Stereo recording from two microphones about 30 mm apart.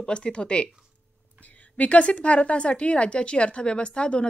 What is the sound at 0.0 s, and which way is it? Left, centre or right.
Speech, left.